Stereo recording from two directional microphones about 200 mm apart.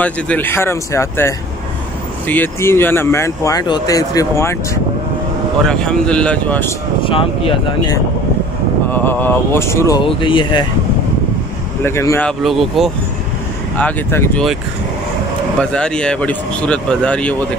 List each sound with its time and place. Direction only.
0.0 s speech: 10° left (ahead or behind)
5.7 s speech: 5° left (ahead or behind)
7.0 s speech: 25° left (ahead or behind)
8.9 s speech: 10° left (ahead or behind)
11.8 s speech: 15° left (ahead or behind)
13.7 s speech: 10° left (ahead or behind)
15.6 s speech: 5° left (ahead or behind)